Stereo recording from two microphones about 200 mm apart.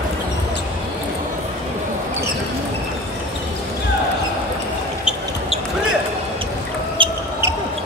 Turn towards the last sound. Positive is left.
turn(degrees=-25)  # may be behind; listen again after turning